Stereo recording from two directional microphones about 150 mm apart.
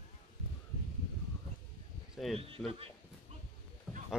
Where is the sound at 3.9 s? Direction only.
5° right (ahead or behind).